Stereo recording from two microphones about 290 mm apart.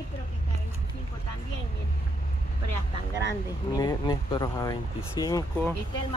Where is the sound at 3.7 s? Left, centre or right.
Centre.